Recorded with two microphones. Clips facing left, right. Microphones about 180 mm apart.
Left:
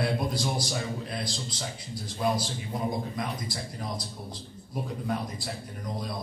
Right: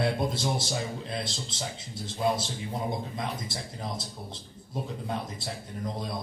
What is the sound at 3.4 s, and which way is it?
Speech, 25° right (ahead or behind).